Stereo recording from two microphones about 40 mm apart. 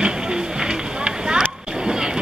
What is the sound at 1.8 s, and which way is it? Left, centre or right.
Vehicle, centre.